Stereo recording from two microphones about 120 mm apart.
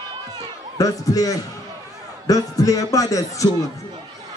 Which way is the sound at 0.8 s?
30° left (ahead or behind).